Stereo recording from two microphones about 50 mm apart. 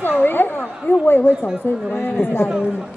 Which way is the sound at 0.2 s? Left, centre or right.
Left.